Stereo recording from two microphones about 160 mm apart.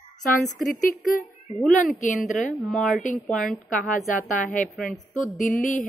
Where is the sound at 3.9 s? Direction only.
55° left (ahead or behind).